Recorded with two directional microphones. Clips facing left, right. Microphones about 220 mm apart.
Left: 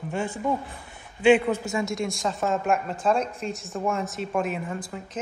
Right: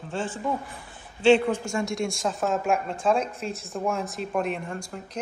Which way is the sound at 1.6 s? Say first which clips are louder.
Even; centre (ahead or behind).